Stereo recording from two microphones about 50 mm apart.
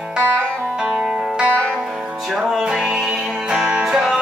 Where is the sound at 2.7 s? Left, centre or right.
Centre.